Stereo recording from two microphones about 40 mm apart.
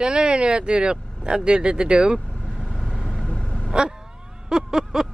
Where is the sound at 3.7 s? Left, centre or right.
Right.